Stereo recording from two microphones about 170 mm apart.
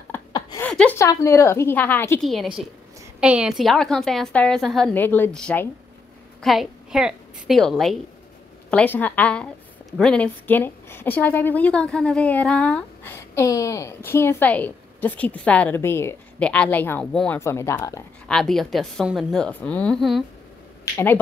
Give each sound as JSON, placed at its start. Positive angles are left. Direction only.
{"t": 0.6, "sound": "a sound", "side_deg": 5}
{"t": 0.9, "sound": "a woman's voice", "side_deg": 15}
{"t": 2.2, "sound": "a woman's voice", "side_deg": 0}
{"t": 17.4, "sound": "a woman's voice", "side_deg": 15}
{"t": 18.3, "sound": "a woman's voice", "side_deg": 0}
{"t": 20.9, "sound": "a woman's voice", "side_deg": 10}